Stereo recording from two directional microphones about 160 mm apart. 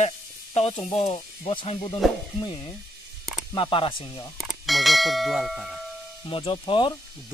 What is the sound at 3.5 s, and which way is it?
Speech, 35° left (ahead or behind).